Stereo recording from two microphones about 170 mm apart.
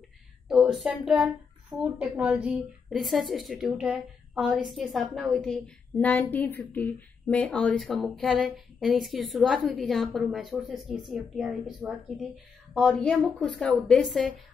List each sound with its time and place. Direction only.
0.5 s speech: centre (ahead or behind)